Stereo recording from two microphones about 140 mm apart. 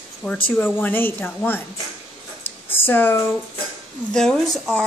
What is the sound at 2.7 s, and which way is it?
A woman's voice, 15° left (ahead or behind).